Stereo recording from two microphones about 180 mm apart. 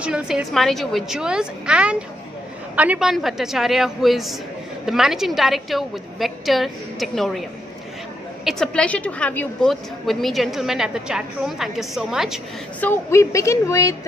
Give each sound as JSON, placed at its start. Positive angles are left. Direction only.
{"t": 0.0, "sound": "a woman's voice", "side_deg": -5}
{"t": 8.5, "sound": "a woman's voice", "side_deg": 5}
{"t": 12.8, "sound": "a woman's voice", "side_deg": 15}